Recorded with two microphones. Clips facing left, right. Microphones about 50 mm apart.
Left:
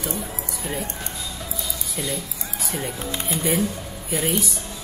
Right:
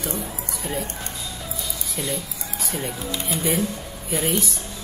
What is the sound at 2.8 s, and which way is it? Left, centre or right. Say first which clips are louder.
Speech: even; left.